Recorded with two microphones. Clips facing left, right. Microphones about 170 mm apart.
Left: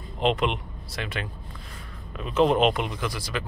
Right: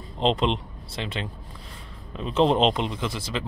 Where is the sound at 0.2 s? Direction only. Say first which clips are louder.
Right 1 dB; 30° right (ahead or behind).